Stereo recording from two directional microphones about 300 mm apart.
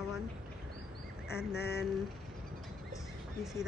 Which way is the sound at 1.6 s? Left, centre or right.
Left.